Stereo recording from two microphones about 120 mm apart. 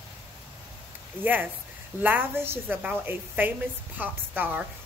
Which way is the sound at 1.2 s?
15° right (ahead or behind).